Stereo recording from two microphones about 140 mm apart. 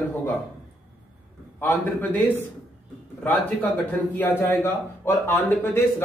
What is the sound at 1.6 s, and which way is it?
Speech, 10° left (ahead or behind).